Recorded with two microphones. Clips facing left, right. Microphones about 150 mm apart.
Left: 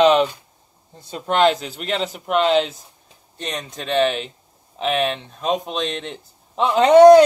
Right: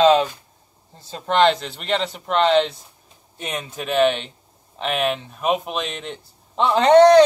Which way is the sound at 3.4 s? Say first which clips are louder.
Even; 10° right (ahead or behind).